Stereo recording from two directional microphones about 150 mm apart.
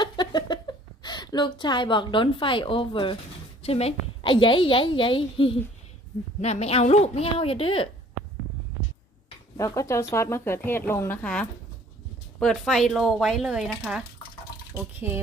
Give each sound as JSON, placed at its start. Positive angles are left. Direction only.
{"t": 0.0, "sound": "a sound", "side_deg": 30}
{"t": 3.6, "sound": "a woman's voice", "side_deg": 40}
{"t": 9.6, "sound": "a woman's voice", "side_deg": 20}
{"t": 15.0, "sound": "speech", "side_deg": -15}